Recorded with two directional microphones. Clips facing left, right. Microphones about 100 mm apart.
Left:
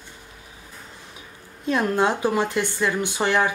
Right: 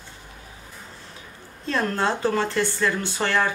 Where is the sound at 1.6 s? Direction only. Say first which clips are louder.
Left 3 dB; 15° left (ahead or behind).